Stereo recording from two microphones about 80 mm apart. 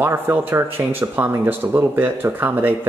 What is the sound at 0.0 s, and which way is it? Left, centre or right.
Speech, right.